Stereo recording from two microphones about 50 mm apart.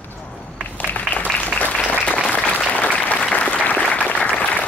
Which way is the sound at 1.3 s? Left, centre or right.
Left.